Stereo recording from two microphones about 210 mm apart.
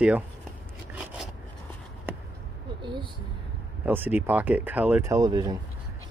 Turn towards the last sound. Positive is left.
turn(degrees=-15)  # may be behind; listen again after turning